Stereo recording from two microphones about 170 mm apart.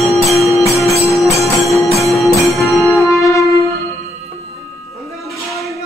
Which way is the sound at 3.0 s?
20° left (ahead or behind).